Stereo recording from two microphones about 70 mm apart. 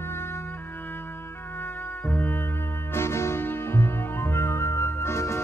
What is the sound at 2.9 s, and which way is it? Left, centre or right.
Music, left.